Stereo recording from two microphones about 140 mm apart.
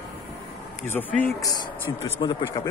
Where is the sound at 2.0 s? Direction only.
35° left (ahead or behind).